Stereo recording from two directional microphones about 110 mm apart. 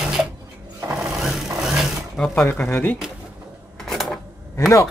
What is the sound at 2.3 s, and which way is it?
Speech, 15° left (ahead or behind).